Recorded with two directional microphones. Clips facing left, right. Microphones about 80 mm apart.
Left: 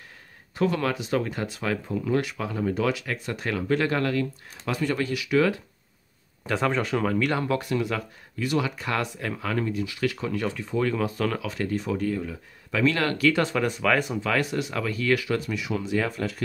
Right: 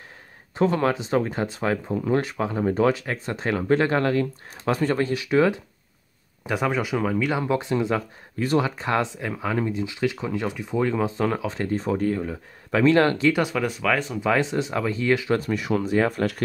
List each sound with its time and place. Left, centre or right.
0.6 s speech: right
6.4 s speech: centre
7.4 s speech: right
13.3 s speech: centre
13.6 s speech: centre
14.2 s speech: right
15.3 s speech: right